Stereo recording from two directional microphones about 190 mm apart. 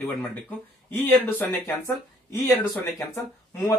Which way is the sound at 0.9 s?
10° left (ahead or behind).